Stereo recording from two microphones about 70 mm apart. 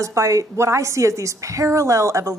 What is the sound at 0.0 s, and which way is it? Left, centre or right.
Speech, right.